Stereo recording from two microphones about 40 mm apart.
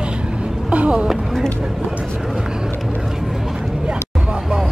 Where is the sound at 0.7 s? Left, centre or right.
Right.